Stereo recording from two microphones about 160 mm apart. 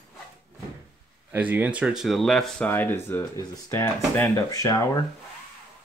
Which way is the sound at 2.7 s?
15° left (ahead or behind).